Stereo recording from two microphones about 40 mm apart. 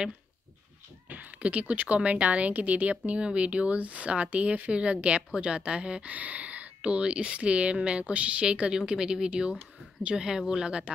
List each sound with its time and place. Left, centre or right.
1.0 s speech: right
3.1 s speech: right
6.1 s speech: right